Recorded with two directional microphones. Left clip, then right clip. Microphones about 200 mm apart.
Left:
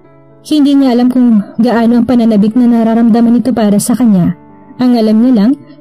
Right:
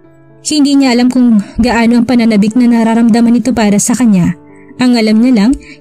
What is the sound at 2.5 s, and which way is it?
Speech, 25° right (ahead or behind).